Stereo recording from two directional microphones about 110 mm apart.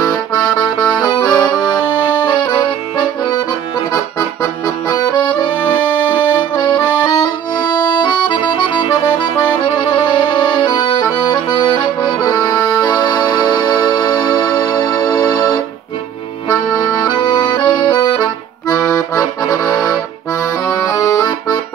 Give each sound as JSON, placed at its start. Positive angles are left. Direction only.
{"t": 0.0, "sound": "accordion", "side_deg": 30}
{"t": 6.5, "sound": "accordion", "side_deg": 40}